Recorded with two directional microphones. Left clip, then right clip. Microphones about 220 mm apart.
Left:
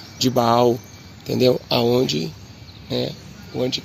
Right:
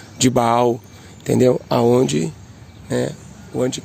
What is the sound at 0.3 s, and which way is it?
Speech, 45° right (ahead or behind).